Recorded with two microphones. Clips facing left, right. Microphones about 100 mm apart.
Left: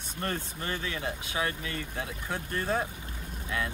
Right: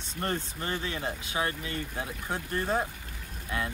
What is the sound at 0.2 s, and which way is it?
Speech, 30° right (ahead or behind).